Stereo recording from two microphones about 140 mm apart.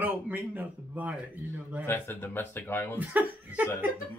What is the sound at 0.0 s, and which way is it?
Speech, 10° right (ahead or behind).